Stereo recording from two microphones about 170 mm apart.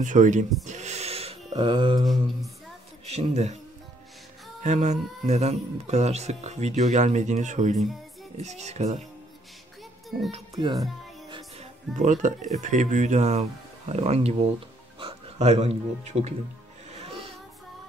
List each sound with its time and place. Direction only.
0.0 s speech: 45° right (ahead or behind)
0.7 s a sound: 40° right (ahead or behind)
1.5 s speech: 25° right (ahead or behind)
3.1 s speech: 40° right (ahead or behind)
4.6 s speech: 40° right (ahead or behind)
10.5 s music: 25° right (ahead or behind)
12.0 s speech: 45° right (ahead or behind)